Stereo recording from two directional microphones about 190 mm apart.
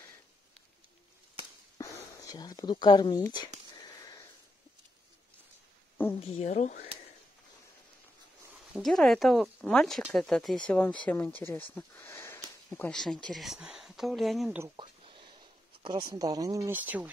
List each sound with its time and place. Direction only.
1.8 s speech: 20° left (ahead or behind)
3.7 s sniff: 20° left (ahead or behind)
6.1 s speech: 35° left (ahead or behind)
8.7 s speech: centre (ahead or behind)
14.8 s a sound: 25° right (ahead or behind); by 17.1 s 10° right (ahead or behind)